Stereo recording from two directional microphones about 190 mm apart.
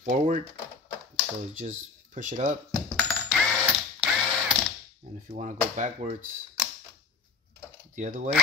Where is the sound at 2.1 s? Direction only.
40° right (ahead or behind).